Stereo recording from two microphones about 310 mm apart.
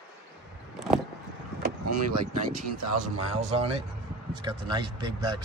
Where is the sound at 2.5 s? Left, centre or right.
Right.